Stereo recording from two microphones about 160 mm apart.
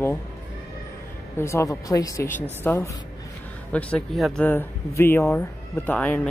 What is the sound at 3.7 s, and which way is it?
Speech, 5° left (ahead or behind).